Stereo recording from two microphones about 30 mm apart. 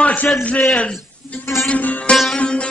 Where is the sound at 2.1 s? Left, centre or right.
Left.